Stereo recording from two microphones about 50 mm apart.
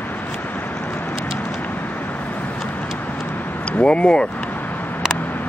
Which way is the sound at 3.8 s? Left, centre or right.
Centre.